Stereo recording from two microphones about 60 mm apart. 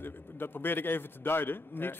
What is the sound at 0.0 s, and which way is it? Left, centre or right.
A man's voice, left.